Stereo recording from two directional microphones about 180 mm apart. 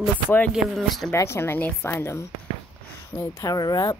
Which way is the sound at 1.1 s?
15° left (ahead or behind).